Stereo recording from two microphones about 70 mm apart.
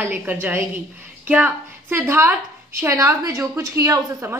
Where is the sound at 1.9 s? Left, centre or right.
Right.